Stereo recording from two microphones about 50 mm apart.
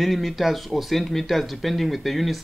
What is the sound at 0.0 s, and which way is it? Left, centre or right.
Speech, centre.